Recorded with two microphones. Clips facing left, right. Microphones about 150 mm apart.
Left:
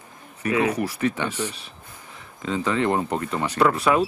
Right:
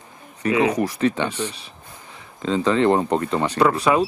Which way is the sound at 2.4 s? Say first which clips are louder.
Right 5 dB; 30° right (ahead or behind).